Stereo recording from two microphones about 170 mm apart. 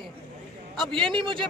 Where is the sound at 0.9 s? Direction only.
30° right (ahead or behind).